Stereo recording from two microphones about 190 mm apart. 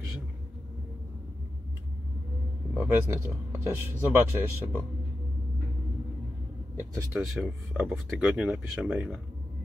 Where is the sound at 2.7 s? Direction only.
10° right (ahead or behind).